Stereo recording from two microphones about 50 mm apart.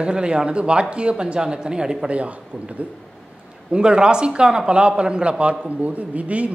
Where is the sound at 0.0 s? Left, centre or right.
Centre.